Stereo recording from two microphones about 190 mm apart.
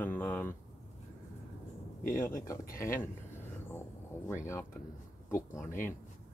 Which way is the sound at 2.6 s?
45° left (ahead or behind).